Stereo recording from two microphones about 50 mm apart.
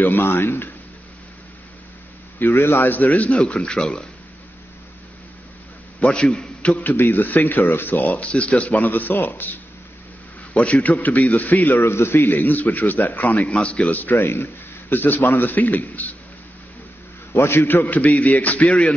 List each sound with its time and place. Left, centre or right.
0.0 s a man's voice: left
2.4 s a man's voice: left
3.4 s speech: left
5.9 s a man's voice: centre
6.6 s a man's voice: left
6.9 s a man's voice: left
8.7 s a man's voice: left
11.8 s a man's voice: left
14.1 s a man's voice: left
17.3 s a man's voice: left
17.6 s a man's voice: left